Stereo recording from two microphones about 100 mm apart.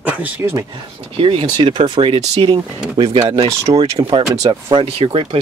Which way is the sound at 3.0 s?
35° right (ahead or behind).